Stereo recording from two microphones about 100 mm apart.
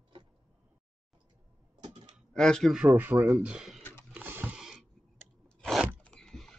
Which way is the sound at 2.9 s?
20° right (ahead or behind).